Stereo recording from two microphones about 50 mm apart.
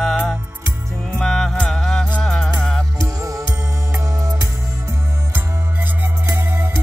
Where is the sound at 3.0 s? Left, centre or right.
Right.